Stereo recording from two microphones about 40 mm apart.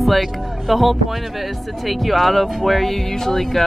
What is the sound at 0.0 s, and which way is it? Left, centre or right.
Speech, centre.